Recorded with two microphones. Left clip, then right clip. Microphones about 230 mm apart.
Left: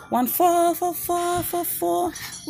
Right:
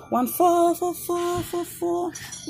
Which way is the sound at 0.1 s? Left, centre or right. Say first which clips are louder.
Left 1 dB; left.